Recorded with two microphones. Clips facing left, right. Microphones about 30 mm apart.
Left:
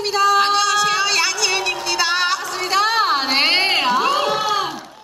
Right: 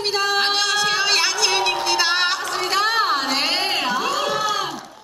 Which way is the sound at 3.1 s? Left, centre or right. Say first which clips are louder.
Left 4 dB; centre.